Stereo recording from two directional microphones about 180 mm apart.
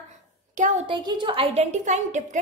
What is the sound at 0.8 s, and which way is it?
A woman's voice, 25° right (ahead or behind).